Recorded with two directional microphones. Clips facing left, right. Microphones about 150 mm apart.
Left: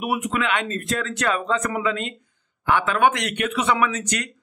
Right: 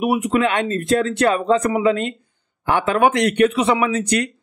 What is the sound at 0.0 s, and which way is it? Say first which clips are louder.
Speech: right 6 dB; 30° right (ahead or behind).